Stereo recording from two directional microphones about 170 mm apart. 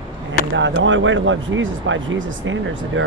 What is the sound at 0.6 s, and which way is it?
Speech, 90° right.